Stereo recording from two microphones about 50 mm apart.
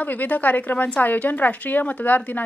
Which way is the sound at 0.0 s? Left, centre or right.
Left.